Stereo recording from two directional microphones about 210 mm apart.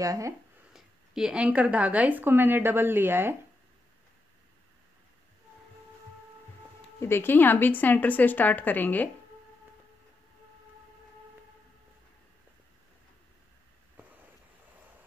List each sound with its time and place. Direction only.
0.0 s speech: 15° right (ahead or behind)
0.7 s speech: 5° right (ahead or behind)
7.0 s a woman's voice: 10° left (ahead or behind)